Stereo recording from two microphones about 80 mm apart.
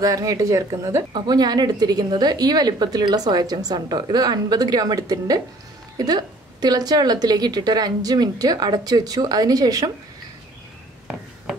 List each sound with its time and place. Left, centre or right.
0.0 s speech: right
1.1 s a woman's voice: right